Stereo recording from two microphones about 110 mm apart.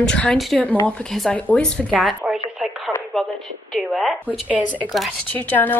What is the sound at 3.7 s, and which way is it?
Speech, centre (ahead or behind).